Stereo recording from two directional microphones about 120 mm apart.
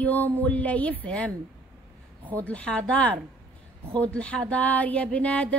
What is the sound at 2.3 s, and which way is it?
Speech, 10° left (ahead or behind).